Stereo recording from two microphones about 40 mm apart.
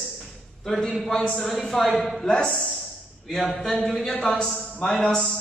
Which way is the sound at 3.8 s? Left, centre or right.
Centre.